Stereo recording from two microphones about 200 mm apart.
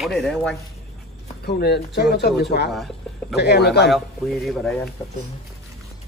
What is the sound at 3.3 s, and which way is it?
Speech, 55° left (ahead or behind).